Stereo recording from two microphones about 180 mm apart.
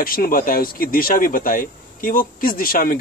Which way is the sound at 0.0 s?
55° left (ahead or behind).